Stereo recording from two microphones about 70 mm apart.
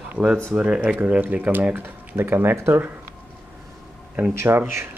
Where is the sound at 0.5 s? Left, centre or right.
Centre; by 2.9 s right.